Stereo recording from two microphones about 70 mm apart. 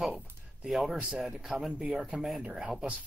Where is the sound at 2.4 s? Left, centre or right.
Centre.